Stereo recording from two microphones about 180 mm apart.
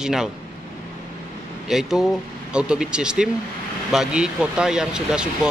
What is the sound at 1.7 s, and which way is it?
A man's voice, centre (ahead or behind).